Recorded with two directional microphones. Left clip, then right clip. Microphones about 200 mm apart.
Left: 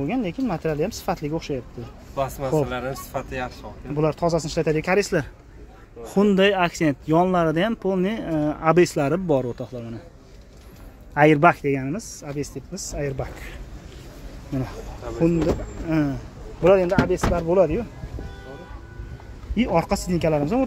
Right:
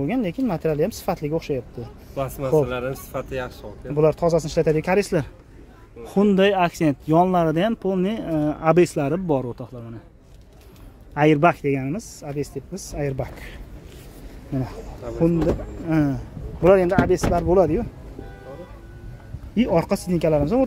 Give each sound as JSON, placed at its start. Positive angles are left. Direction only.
{"t": 0.0, "sound": "speech", "side_deg": -20}
{"t": 2.1, "sound": "speech", "side_deg": -50}
{"t": 3.9, "sound": "speech", "side_deg": -15}
{"t": 11.1, "sound": "speech", "side_deg": 0}
{"t": 15.9, "sound": "speech", "side_deg": -20}
{"t": 19.5, "sound": "speech", "side_deg": -20}